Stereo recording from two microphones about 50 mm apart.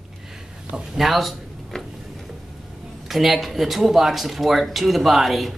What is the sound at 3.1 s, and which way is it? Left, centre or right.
Speech, centre.